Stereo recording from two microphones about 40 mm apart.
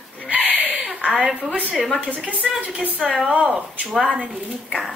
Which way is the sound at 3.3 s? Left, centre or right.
Right.